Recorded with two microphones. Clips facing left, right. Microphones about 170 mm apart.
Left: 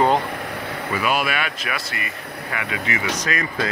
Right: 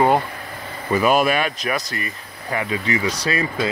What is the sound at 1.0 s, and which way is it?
Speech, 45° right (ahead or behind).